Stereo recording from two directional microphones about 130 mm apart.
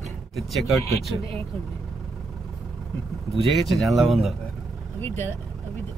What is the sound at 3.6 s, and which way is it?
Speech, centre (ahead or behind).